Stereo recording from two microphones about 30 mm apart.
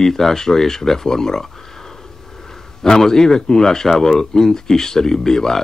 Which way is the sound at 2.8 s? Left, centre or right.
Centre.